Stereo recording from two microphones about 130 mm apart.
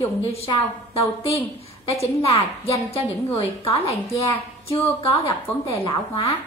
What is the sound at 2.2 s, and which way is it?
A woman's voice, 50° left (ahead or behind).